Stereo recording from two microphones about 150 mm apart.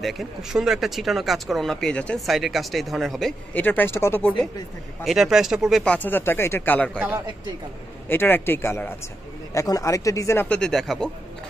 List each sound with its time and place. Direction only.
0.0 s speech: centre (ahead or behind); by 4.3 s 15° left (ahead or behind)
5.0 s speech: centre (ahead or behind)
5.9 s speech: 15° left (ahead or behind)
8.1 s speech: 15° left (ahead or behind)